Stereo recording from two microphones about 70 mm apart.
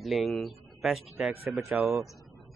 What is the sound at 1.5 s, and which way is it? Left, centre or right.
Speech, right.